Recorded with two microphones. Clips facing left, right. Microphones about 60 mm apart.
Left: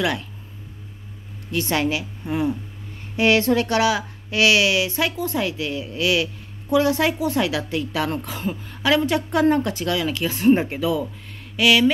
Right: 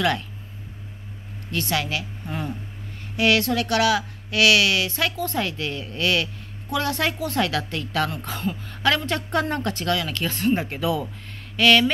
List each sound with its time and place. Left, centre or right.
0.0 s a woman's voice: centre
1.5 s a woman's voice: left
3.2 s a woman's voice: left; by 8.5 s centre
8.6 s a woman's voice: centre
10.8 s speech: centre